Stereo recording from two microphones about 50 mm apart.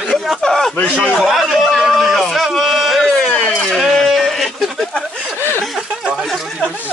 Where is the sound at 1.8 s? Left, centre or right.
Centre.